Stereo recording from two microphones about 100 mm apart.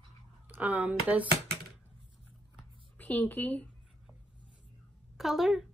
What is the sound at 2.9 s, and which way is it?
Speech, 15° left (ahead or behind).